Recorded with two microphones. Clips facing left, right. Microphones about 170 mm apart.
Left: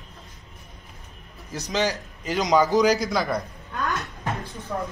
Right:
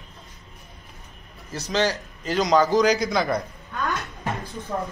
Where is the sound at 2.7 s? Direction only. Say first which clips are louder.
Even; 5° left (ahead or behind).